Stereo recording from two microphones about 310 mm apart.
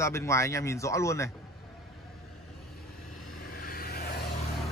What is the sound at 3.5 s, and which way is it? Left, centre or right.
Vehicle, left.